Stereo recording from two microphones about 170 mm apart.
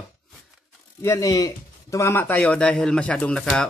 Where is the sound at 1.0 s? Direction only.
20° left (ahead or behind).